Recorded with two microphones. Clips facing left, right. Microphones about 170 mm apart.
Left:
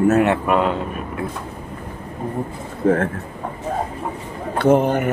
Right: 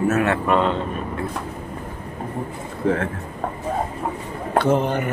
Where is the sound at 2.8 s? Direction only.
45° left (ahead or behind).